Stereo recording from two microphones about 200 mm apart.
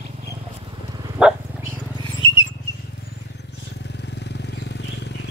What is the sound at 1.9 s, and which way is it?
Wild animals, 20° left (ahead or behind).